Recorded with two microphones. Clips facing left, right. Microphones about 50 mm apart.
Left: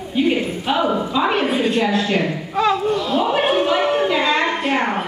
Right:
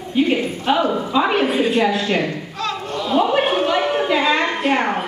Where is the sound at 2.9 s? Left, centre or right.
Centre.